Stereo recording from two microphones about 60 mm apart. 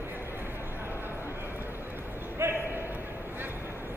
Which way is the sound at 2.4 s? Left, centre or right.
Right.